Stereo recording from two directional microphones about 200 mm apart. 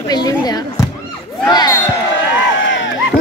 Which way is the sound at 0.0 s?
20° left (ahead or behind).